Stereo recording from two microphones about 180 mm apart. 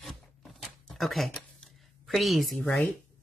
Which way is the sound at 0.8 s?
Centre (ahead or behind).